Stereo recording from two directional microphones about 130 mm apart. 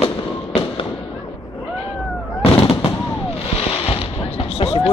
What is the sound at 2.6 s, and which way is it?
Fireworks, 45° left (ahead or behind).